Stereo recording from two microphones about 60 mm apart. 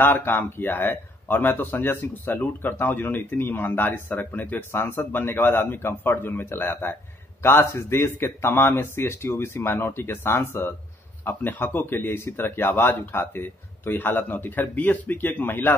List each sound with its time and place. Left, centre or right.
0.0 s speech: left